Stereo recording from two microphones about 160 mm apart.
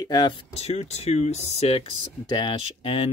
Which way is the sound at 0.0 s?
25° left (ahead or behind).